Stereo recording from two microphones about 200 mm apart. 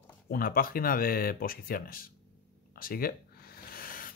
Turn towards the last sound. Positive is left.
turn(degrees=45)  # may be behind; listen again after turning